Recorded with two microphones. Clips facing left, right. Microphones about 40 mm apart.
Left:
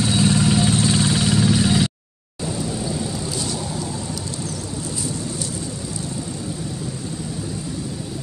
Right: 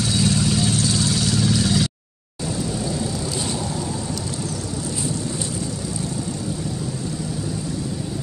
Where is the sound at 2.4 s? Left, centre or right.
Centre.